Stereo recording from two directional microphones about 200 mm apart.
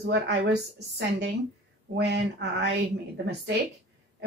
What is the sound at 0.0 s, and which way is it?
Speech, 60° right (ahead or behind).